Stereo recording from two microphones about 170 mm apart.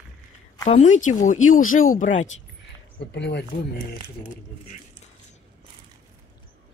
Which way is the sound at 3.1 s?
85° left.